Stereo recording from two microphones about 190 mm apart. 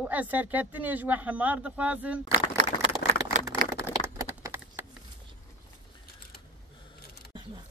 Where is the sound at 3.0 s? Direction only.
50° left (ahead or behind).